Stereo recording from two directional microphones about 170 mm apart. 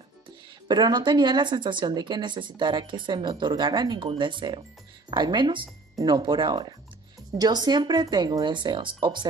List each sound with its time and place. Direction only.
0.7 s a woman's voice: 25° right (ahead or behind)